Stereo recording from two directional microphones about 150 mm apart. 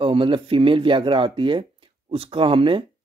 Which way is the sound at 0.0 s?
35° right (ahead or behind).